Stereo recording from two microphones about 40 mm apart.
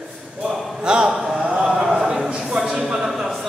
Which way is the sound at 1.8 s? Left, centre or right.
Centre.